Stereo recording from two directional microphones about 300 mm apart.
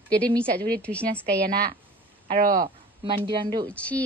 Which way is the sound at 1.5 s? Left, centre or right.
Right.